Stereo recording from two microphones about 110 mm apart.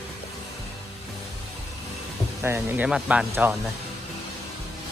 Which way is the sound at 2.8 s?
10° right (ahead or behind).